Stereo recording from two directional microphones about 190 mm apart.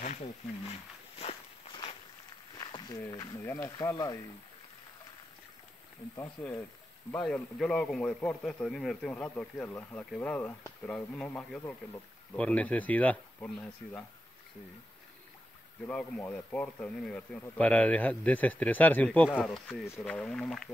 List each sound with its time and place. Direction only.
0.0 s wild animals: 40° left (ahead or behind)
2.6 s speech: 20° left (ahead or behind)
6.4 s a man's voice: 5° left (ahead or behind)
15.9 s speech: 5° left (ahead or behind)